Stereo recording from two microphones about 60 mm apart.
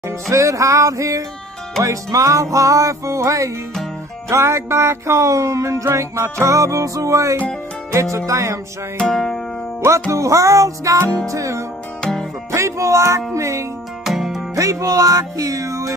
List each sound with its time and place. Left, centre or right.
0.3 s music: right
4.3 s music: right
7.9 s speech: right
8.3 s music: right
8.9 s music: centre
9.8 s music: right
12.0 s music: centre
12.4 s music: right
14.0 s music: centre
14.5 s music: right